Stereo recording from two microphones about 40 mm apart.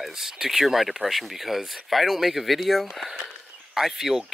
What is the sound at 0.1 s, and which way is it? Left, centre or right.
Speech, centre.